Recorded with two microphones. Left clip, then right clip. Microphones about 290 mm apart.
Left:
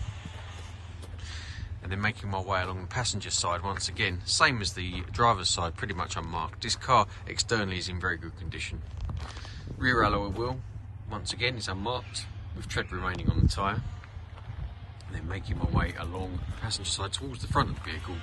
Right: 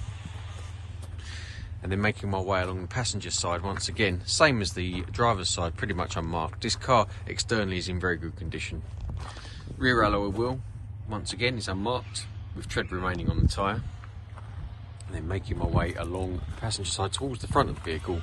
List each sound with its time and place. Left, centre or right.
1.3 s speech: centre
15.1 s speech: centre
16.8 s speech: right
17.6 s speech: centre